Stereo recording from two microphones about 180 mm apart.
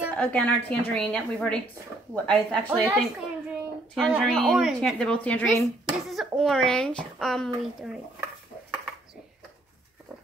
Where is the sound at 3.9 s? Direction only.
5° right (ahead or behind).